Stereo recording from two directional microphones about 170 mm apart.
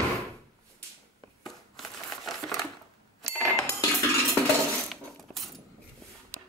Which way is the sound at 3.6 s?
20° left (ahead or behind).